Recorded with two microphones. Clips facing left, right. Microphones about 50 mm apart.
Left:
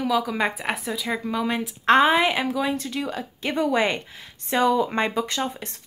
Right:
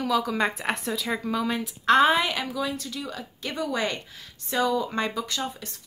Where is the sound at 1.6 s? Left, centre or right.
Left.